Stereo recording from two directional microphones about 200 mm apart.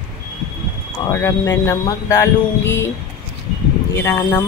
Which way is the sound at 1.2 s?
15° left (ahead or behind).